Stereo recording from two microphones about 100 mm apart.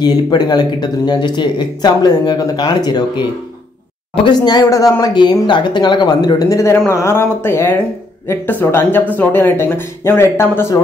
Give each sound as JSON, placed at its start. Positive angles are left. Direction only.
{"t": 0.0, "sound": "speech", "side_deg": 45}
{"t": 5.1, "sound": "speech", "side_deg": 50}